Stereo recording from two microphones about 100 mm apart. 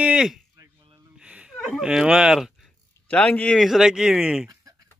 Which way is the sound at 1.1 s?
10° right (ahead or behind).